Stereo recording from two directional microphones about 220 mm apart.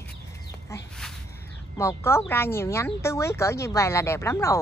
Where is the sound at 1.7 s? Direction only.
10° left (ahead or behind).